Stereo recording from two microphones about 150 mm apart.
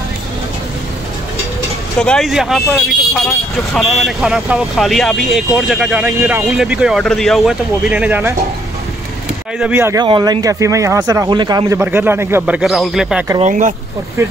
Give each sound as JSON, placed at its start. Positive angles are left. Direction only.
{"t": 2.0, "sound": "speech", "side_deg": 5}
{"t": 9.6, "sound": "speech", "side_deg": -10}
{"t": 10.0, "sound": "speech", "side_deg": -30}
{"t": 11.8, "sound": "speech", "side_deg": -15}
{"t": 13.4, "sound": "speech", "side_deg": -55}